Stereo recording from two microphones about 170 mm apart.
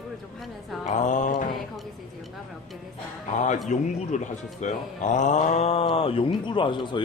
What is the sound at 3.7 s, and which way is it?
A man's voice, 45° left (ahead or behind).